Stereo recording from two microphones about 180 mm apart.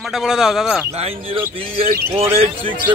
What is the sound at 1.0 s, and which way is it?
Speech, 30° right (ahead or behind).